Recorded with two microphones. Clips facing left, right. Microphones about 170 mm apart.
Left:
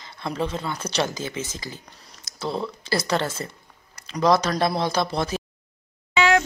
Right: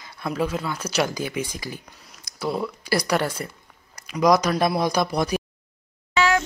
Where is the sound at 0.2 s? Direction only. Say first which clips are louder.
Right 2 dB; 5° right (ahead or behind).